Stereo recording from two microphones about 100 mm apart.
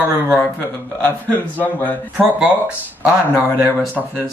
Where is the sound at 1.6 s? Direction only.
15° left (ahead or behind).